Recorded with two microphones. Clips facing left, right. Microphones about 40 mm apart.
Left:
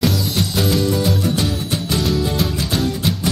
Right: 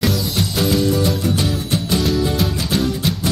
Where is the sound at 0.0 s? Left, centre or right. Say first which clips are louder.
Even; centre.